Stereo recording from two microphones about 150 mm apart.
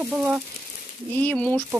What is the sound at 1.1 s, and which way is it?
Speech, 10° left (ahead or behind).